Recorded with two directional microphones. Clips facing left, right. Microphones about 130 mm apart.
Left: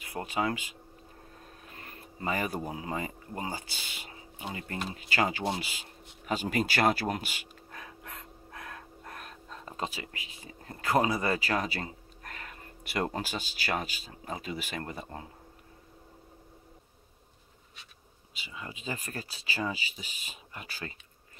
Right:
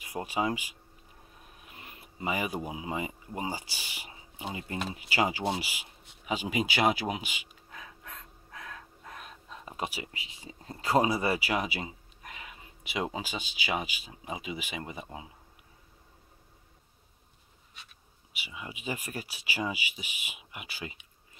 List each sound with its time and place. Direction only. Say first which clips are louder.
0.0 s speech: even; 20° right (ahead or behind)
1.6 s speech: left 1 dB; 15° right (ahead or behind)
6.2 s speech: left 1 dB; 5° right (ahead or behind)
8.1 s a sound: left 2 dB; 5° left (ahead or behind)
9.9 s speech: right 1 dB; 15° right (ahead or behind)
18.5 s speech: right 1 dB; 15° right (ahead or behind)